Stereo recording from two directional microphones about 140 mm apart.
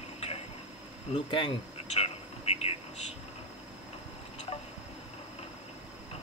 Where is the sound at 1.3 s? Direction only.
40° left (ahead or behind).